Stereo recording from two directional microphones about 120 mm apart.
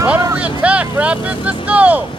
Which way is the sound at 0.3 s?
10° right (ahead or behind).